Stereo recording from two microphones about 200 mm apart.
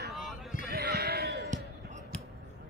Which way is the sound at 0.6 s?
50° right (ahead or behind).